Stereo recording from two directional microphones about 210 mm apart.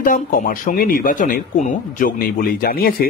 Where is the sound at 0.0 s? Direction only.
40° left (ahead or behind).